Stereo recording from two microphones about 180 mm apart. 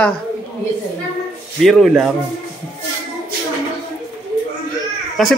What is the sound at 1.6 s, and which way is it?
Speech, centre (ahead or behind).